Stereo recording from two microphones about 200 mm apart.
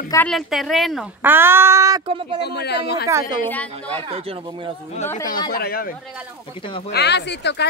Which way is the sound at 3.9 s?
25° right (ahead or behind).